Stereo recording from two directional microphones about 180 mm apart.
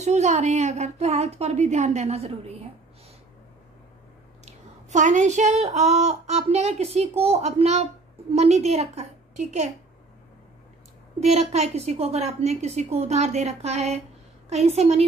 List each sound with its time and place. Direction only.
0.0 s speech: 40° right (ahead or behind)
4.5 s speech: 40° right (ahead or behind)
11.1 s speech: 40° right (ahead or behind)